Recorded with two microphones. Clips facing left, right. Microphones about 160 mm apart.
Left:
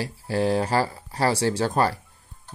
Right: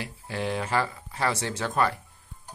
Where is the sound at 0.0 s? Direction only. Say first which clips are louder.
Left 7 dB; 35° left (ahead or behind).